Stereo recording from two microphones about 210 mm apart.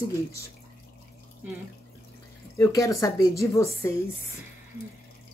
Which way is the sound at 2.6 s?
15° left (ahead or behind).